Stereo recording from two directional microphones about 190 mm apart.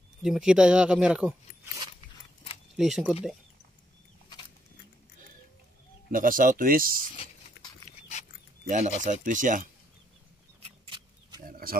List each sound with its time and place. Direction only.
0.2 s speech: 5° right (ahead or behind)
2.7 s speech: centre (ahead or behind)
6.1 s speech: 45° right (ahead or behind)
7.6 s dog: 60° left (ahead or behind)
8.6 s speech: 40° right (ahead or behind)
10.9 s a sound: 20° right (ahead or behind)